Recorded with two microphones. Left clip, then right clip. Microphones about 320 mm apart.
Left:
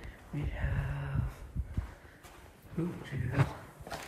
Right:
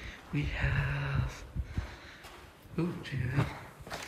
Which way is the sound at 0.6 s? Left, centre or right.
Right.